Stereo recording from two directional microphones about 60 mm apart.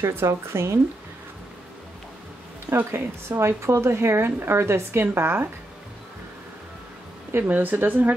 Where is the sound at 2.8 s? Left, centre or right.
Right.